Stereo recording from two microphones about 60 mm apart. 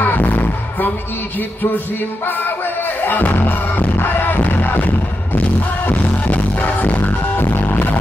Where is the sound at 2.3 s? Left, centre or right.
Left.